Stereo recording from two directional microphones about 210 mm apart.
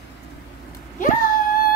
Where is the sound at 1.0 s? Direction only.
40° left (ahead or behind).